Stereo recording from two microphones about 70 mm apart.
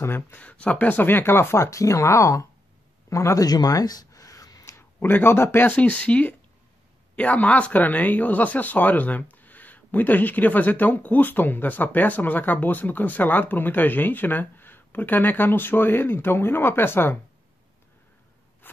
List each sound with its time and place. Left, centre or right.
0.0 s speech: left
0.4 s a man's voice: centre; by 3.4 s left
3.4 s a sound: left
4.7 s speech: left
5.8 s speech: centre